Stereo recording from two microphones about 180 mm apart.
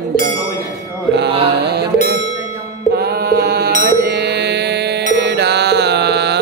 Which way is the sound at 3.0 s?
60° right (ahead or behind).